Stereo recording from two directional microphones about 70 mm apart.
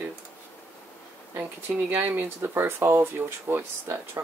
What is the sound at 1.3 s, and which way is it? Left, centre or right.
Speech, right.